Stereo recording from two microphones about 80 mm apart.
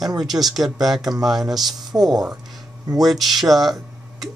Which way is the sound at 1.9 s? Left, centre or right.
Right.